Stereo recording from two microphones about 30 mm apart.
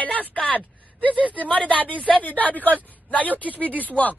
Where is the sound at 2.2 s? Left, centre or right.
Left.